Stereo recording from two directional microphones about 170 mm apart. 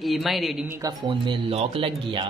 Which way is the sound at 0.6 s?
15° right (ahead or behind).